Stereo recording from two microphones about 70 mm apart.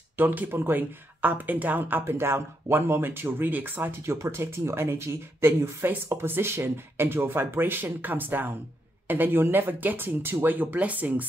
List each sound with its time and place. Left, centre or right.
0.2 s speech: right
4.0 s speech: right